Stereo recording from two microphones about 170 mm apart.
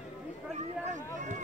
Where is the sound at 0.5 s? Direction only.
45° right (ahead or behind).